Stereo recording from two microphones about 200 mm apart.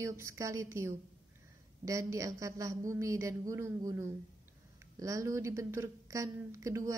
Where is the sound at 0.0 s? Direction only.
15° right (ahead or behind).